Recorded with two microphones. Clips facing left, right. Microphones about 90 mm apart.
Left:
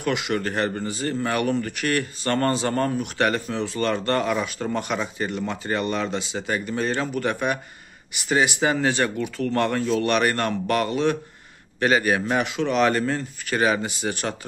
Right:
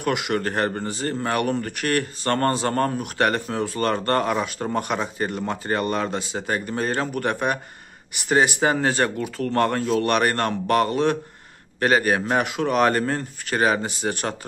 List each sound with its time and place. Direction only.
0.0 s a man's voice: 50° right (ahead or behind)
4.4 s speech: 30° right (ahead or behind)
4.7 s a man's voice: 50° right (ahead or behind)